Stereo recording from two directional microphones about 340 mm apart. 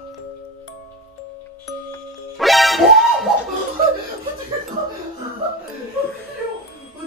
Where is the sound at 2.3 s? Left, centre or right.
Centre.